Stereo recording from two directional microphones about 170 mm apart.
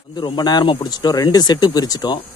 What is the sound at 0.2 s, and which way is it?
Speech, 25° left (ahead or behind).